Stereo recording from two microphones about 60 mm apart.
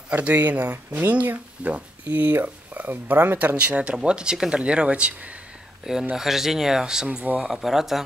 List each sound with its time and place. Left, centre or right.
0.1 s speech: right
3.3 s speech: right
6.1 s speech: centre